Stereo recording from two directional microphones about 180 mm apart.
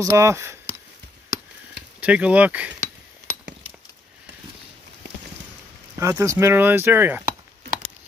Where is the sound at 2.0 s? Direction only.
5° right (ahead or behind).